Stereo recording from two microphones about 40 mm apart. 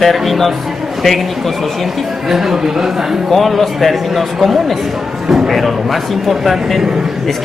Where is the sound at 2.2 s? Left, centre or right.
Centre.